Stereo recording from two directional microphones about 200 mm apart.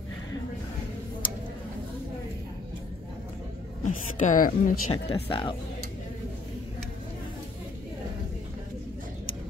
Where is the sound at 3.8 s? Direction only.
35° left (ahead or behind).